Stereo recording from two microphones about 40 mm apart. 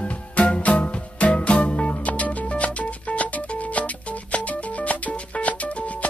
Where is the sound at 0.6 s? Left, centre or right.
Left.